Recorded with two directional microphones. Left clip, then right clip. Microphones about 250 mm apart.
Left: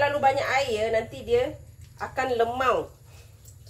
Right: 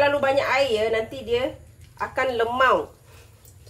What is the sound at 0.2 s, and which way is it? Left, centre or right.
A woman's voice, right.